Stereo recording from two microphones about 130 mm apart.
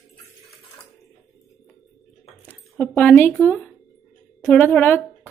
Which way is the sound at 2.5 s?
10° left (ahead or behind).